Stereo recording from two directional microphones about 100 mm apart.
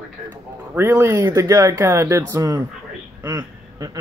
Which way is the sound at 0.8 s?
25° right (ahead or behind).